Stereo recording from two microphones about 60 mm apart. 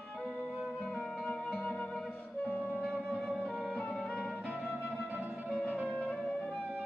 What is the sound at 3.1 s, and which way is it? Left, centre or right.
Music, centre.